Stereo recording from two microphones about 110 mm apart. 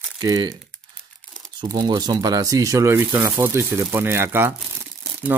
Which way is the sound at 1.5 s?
40° right (ahead or behind).